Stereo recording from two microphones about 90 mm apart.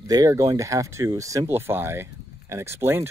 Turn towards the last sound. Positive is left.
turn(degrees=-30)  # may be behind; listen again after turning